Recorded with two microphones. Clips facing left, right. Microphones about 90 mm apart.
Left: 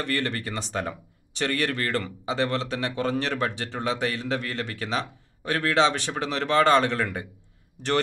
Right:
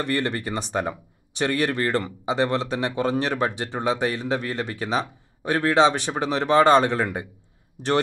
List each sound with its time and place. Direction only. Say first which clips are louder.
0.0 s speech: right 3 dB; 15° right (ahead or behind)